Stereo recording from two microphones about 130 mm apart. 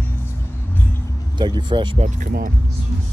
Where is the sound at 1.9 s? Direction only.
85° right.